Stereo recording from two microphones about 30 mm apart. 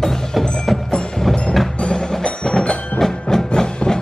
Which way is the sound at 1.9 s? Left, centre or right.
Left.